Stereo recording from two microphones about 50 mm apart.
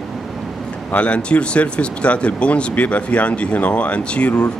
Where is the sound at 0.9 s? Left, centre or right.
Left.